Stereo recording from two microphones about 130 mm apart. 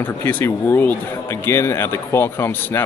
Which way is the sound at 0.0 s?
15° left (ahead or behind).